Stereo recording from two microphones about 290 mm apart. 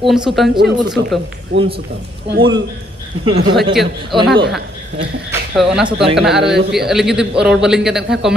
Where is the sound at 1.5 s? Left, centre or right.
Right.